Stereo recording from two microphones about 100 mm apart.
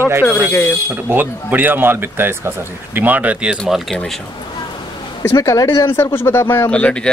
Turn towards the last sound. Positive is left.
turn(degrees=10)  # may be behind; listen again after turning